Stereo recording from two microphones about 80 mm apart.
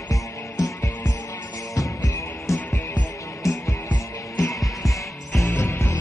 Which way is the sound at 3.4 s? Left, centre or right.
Left.